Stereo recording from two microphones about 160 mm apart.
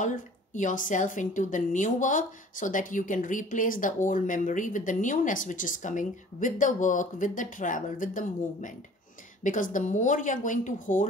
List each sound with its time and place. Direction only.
0.0 s a woman's voice: 50° left (ahead or behind)